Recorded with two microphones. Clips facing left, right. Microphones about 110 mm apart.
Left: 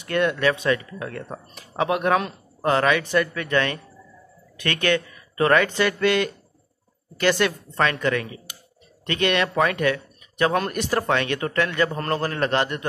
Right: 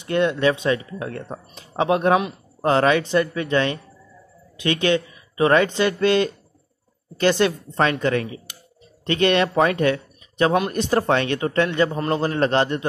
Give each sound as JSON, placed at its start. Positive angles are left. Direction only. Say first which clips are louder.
{"t": 0.0, "sound": "speech", "louder": "right 2 dB", "side_deg": -25}